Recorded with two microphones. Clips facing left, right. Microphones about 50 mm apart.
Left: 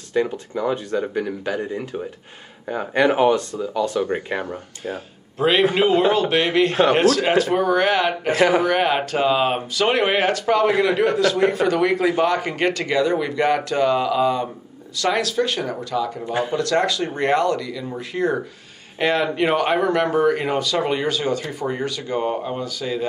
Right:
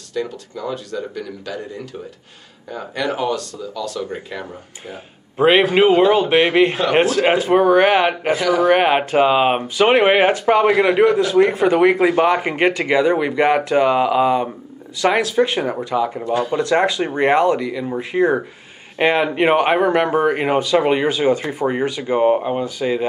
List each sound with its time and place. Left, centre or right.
0.1 s speech: left
5.4 s speech: right